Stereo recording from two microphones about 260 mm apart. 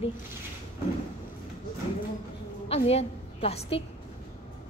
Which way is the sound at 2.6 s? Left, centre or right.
Left.